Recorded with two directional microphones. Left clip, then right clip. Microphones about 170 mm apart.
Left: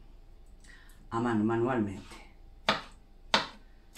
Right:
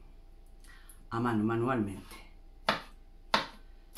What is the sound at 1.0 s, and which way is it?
Speech, 10° right (ahead or behind).